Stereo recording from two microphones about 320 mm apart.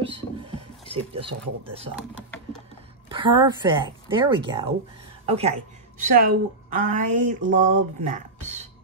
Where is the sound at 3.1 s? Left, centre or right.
Centre.